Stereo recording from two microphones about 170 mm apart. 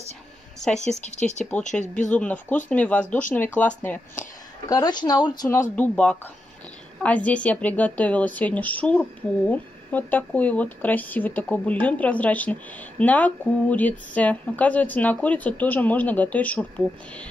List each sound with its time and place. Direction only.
1.1 s speech: 45° left (ahead or behind)
2.1 s speech: 10° left (ahead or behind)
4.6 s speech: 25° left (ahead or behind)